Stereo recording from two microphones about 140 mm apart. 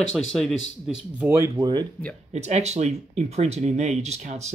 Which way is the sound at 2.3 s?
55° right (ahead or behind).